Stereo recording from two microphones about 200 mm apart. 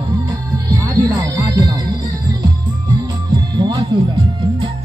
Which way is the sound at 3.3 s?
20° right (ahead or behind).